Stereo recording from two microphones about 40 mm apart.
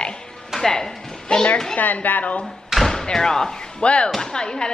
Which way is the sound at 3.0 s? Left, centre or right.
Centre.